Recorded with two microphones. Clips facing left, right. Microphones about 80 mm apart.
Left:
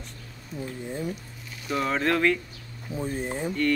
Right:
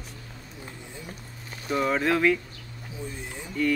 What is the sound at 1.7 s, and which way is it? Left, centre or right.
Speech, centre.